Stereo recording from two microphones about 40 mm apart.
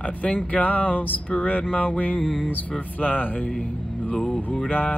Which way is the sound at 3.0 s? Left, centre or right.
Left.